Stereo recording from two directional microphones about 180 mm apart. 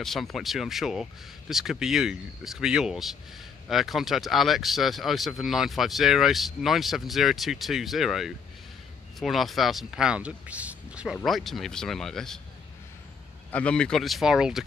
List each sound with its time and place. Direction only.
0.0 s speech: centre (ahead or behind)
13.5 s speech: 5° left (ahead or behind)